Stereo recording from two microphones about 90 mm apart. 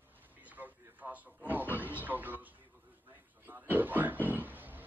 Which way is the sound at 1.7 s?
20° right (ahead or behind).